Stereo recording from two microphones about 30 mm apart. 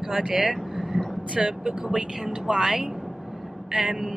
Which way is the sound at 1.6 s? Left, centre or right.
Right.